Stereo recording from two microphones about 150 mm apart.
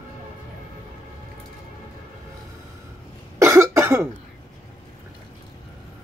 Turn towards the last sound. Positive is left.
turn(degrees=-20)  # may be behind; listen again after turning